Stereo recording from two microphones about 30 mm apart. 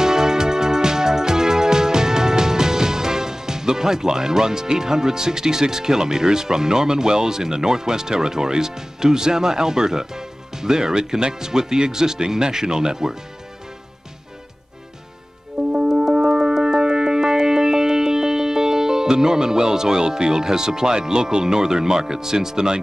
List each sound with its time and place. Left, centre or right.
0.0 s music: centre
15.7 s music: right